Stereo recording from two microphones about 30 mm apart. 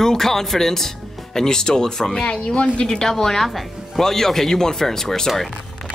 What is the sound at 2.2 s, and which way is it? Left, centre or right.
Speech, left.